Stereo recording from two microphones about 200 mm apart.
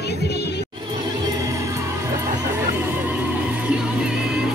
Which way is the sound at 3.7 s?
5° right (ahead or behind).